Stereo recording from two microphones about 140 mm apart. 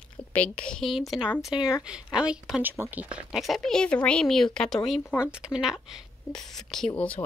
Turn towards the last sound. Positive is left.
turn(degrees=10)  # may be behind; listen again after turning